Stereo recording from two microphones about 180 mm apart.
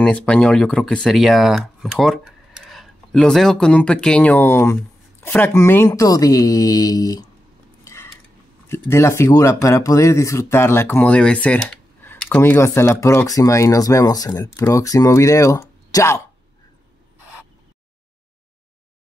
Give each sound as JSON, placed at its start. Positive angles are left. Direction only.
{"t": 0.0, "sound": "speech", "side_deg": 5}
{"t": 7.8, "sound": "cutlery", "side_deg": 15}
{"t": 8.6, "sound": "speech", "side_deg": 15}